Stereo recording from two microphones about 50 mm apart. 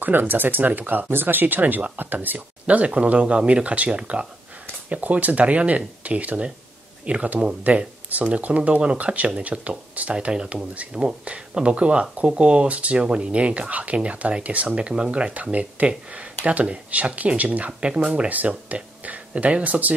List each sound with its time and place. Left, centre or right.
0.0 s speech: right